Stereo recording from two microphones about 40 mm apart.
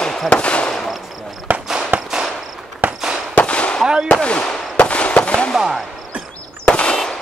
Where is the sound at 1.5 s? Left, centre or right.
Right.